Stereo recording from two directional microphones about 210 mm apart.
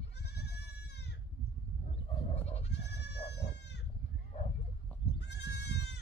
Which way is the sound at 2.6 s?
55° left (ahead or behind).